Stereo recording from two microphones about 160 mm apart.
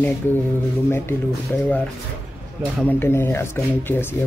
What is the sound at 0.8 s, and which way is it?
Speech, 15° left (ahead or behind).